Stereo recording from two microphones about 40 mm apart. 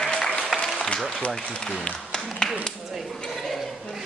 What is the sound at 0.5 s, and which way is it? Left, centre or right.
Applause, centre.